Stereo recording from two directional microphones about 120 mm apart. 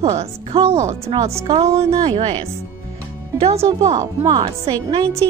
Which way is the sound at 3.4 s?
55° right (ahead or behind).